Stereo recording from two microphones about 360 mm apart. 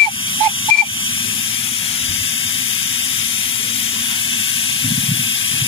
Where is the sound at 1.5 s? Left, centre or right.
Centre.